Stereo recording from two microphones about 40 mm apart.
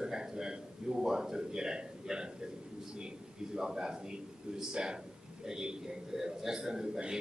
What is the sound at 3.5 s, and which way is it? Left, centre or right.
A man's voice, centre.